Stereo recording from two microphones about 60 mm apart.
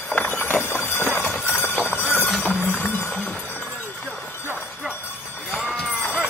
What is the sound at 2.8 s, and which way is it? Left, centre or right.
Music, left.